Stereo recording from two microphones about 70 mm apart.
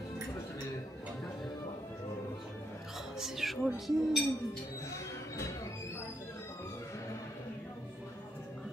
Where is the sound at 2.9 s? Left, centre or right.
Centre.